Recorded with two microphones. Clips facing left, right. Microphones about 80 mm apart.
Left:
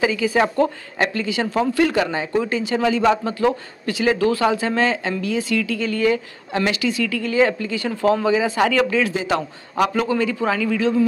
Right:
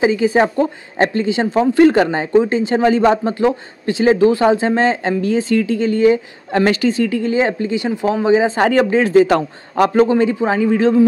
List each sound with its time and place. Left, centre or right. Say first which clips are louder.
0.0 s speech: right 5 dB; right
6.5 s speech: right 6 dB; right
9.1 s a man's voice: right 10 dB; right